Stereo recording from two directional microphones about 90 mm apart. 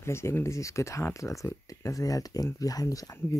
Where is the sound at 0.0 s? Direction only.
30° left (ahead or behind).